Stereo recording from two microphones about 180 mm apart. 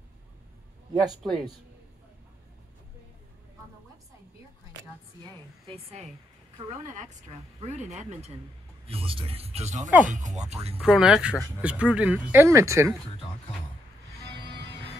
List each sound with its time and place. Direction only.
1.2 s a man's voice: 5° left (ahead or behind)
5.7 s speech: 35° right (ahead or behind)
6.7 s speech: 45° right (ahead or behind)
10.8 s speech: 5° right (ahead or behind)